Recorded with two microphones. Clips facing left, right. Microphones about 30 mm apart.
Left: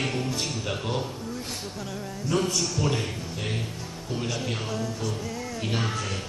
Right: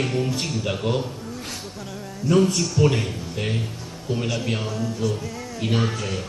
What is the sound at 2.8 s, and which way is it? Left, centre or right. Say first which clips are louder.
Speech: right 6 dB; right.